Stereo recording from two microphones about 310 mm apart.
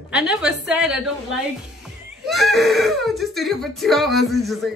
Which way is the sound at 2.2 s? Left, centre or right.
Centre.